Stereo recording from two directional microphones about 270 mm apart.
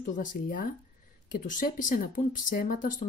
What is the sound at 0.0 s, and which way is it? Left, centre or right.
Speech, left.